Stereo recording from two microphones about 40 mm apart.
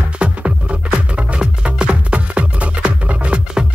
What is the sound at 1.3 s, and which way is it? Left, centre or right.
Music, right.